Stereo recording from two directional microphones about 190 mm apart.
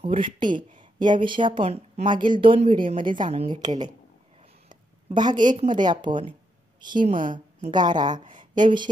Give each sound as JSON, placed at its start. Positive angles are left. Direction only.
{"t": 0.0, "sound": "a woman's voice", "side_deg": -25}
{"t": 7.1, "sound": "a woman's voice", "side_deg": -45}
{"t": 7.7, "sound": "a woman's voice", "side_deg": -20}
{"t": 8.4, "sound": "a sound", "side_deg": -25}